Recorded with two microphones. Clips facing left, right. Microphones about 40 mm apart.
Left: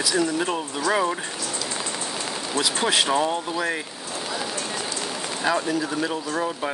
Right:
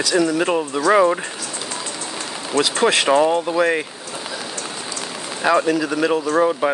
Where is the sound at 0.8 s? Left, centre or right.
Right.